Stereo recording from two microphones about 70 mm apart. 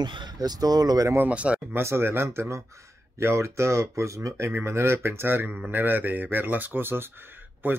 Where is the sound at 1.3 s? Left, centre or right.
Centre.